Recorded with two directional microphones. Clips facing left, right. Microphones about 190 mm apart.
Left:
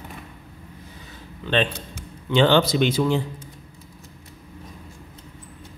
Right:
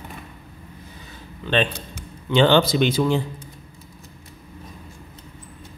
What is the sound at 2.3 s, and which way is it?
Speech, 25° right (ahead or behind).